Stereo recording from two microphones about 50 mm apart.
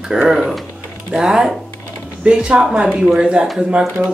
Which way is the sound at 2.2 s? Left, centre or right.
Right.